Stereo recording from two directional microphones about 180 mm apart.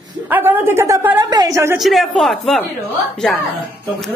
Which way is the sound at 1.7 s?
Centre (ahead or behind).